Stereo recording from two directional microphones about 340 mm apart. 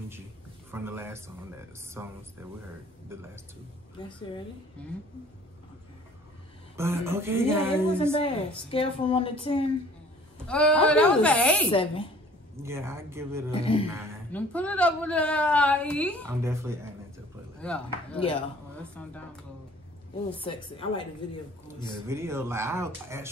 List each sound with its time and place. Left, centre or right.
0.7 s speech: centre
6.8 s speech: centre
8.2 s a woman's voice: centre
10.4 s a woman's voice: centre
11.7 s a woman's voice: centre
12.6 s speech: centre
13.5 s a woman's voice: centre
14.3 s a woman's voice: centre
16.3 s speech: centre
17.6 s a woman's voice: centre
20.3 s a woman's voice: centre
22.0 s speech: centre